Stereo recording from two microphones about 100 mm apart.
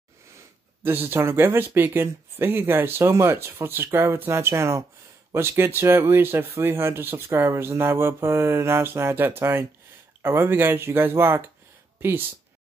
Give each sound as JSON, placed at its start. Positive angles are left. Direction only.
{"t": 0.8, "sound": "speech", "side_deg": -20}